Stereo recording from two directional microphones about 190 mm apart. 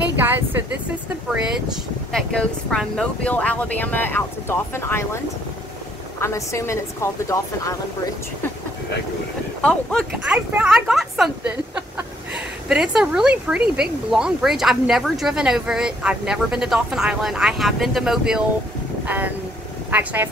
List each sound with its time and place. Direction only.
0.0 s a sound: 10° right (ahead or behind)
2.1 s speech: centre (ahead or behind)
6.2 s speech: 15° left (ahead or behind)
9.6 s speech: 5° left (ahead or behind)
10.2 s speech: 5° right (ahead or behind)